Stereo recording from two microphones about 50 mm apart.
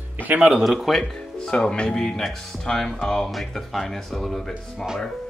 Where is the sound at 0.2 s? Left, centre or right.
Right.